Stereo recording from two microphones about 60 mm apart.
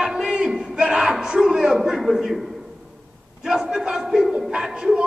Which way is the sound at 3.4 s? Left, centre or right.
Centre.